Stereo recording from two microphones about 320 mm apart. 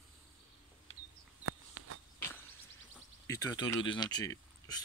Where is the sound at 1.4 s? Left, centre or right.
Right.